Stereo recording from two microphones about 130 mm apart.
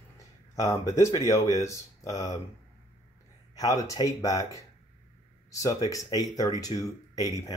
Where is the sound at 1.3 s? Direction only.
25° left (ahead or behind).